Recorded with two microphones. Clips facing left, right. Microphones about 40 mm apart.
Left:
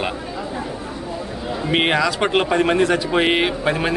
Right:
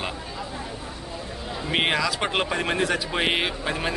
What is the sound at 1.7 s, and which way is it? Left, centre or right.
A man's voice, centre.